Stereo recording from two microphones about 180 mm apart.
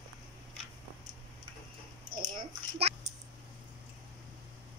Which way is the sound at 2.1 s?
30° right (ahead or behind).